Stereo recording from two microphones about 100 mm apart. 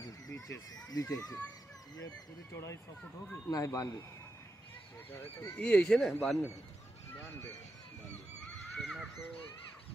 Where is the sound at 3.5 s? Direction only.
35° left (ahead or behind).